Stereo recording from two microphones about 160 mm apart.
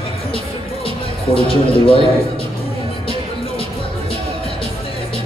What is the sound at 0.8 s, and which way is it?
Speech, 35° left (ahead or behind).